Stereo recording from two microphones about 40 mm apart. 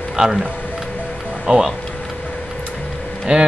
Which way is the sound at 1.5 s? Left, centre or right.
Right.